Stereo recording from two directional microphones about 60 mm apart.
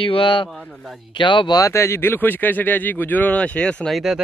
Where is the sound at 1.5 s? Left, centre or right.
Left.